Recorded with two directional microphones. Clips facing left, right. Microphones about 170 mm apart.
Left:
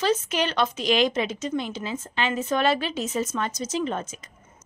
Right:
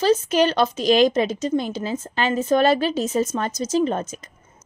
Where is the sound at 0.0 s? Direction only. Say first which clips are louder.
Right 6 dB; 35° right (ahead or behind).